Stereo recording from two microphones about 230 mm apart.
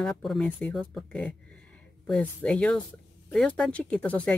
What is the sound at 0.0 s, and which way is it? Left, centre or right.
Speech, centre.